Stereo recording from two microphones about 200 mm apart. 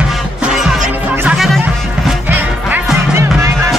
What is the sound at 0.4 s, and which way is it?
Music, 5° right (ahead or behind).